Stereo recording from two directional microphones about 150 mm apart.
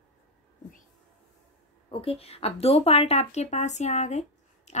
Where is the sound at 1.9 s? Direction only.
40° left (ahead or behind).